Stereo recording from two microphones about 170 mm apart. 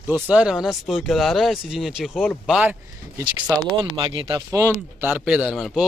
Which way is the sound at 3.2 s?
20° right (ahead or behind).